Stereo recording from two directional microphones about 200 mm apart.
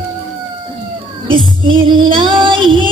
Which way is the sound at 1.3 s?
25° right (ahead or behind).